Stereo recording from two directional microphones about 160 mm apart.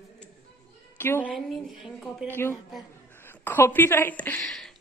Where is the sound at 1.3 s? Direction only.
Centre (ahead or behind).